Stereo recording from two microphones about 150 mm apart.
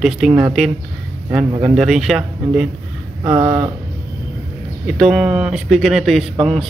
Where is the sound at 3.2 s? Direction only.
20° right (ahead or behind).